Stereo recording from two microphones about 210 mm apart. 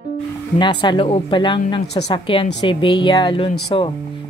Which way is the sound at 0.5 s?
20° left (ahead or behind).